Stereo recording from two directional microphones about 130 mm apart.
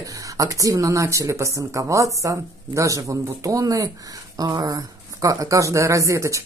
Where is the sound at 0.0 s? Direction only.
25° right (ahead or behind).